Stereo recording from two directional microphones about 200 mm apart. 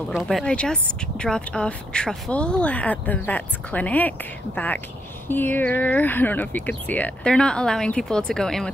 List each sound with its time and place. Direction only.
0.1 s speech: centre (ahead or behind)
5.3 s speech: 10° left (ahead or behind)